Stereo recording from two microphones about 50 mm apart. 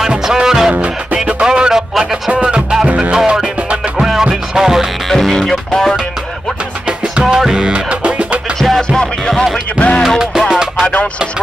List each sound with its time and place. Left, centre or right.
0.2 s music: centre
5.0 s music: centre
6.9 s music: centre
8.5 s music: centre
8.8 s music: centre
9.3 s music: centre
9.8 s music: left
10.0 s music: centre